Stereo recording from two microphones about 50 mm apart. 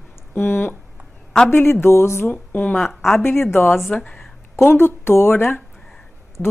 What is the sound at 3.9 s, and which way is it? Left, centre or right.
Speech, left.